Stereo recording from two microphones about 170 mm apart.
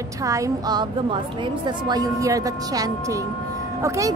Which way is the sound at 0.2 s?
20° right (ahead or behind).